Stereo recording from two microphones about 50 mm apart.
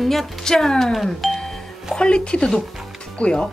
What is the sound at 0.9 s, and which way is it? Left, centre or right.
Doorbell, centre.